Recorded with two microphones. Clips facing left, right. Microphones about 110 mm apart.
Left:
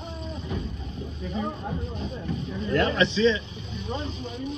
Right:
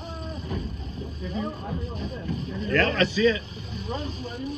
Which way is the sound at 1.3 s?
45° left (ahead or behind).